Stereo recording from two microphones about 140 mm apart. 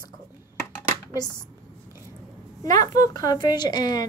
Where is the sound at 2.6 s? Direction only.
25° left (ahead or behind).